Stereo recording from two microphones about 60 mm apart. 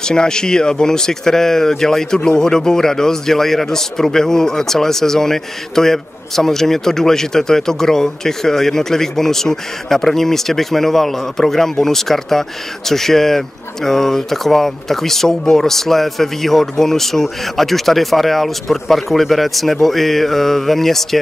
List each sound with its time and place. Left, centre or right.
0.0 s speech: centre